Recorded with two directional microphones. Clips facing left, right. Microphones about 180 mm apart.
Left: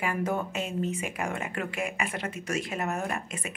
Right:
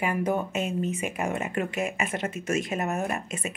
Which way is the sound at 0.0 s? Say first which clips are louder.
Right 3 dB; 20° right (ahead or behind).